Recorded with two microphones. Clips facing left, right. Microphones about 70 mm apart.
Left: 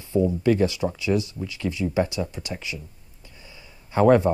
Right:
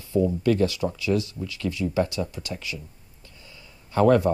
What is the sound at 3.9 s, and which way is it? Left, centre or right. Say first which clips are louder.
Speech: left 2 dB; left.